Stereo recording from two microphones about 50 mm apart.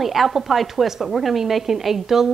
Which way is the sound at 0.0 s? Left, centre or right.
Centre.